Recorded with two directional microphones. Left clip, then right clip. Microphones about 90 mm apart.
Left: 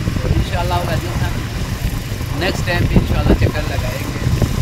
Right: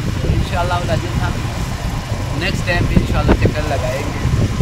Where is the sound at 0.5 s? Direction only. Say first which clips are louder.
Right 2 dB; 30° right (ahead or behind).